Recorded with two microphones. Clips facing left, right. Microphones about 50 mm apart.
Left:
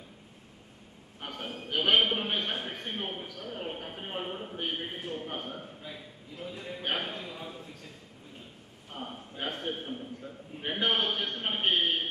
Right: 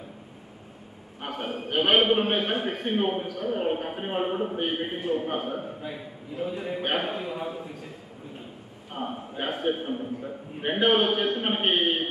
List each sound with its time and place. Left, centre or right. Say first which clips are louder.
1.3 s a man's voice: right 6 dB; centre
8.9 s a man's voice: right 8 dB; centre